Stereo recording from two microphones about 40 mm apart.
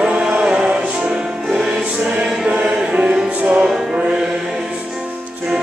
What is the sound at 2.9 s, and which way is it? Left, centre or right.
Music, right.